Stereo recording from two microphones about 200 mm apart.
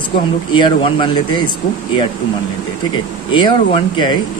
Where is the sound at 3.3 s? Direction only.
25° left (ahead or behind).